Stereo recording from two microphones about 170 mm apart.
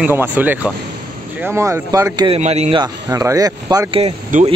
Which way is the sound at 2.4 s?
40° right (ahead or behind).